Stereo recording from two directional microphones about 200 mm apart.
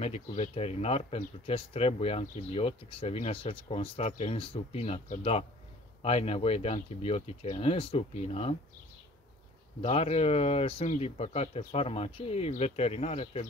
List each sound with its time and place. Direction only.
0.0 s speech: 30° left (ahead or behind)
9.8 s speech: 30° left (ahead or behind)